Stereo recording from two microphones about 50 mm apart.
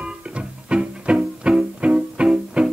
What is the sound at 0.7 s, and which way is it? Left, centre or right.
Music, centre.